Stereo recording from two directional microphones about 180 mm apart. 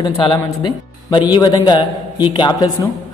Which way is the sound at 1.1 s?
25° left (ahead or behind).